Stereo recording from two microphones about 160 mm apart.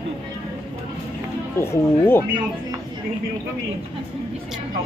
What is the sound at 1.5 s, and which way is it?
Speech, 15° left (ahead or behind).